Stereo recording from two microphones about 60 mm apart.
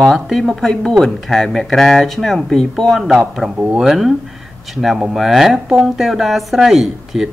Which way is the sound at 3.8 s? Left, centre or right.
Centre.